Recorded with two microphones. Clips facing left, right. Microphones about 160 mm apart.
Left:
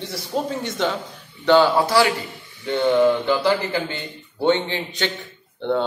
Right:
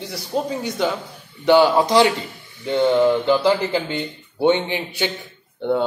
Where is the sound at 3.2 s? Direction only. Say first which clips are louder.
Right 3 dB; 20° right (ahead or behind).